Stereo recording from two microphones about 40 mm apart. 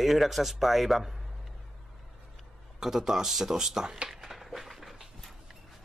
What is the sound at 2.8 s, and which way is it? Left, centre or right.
Speech, centre.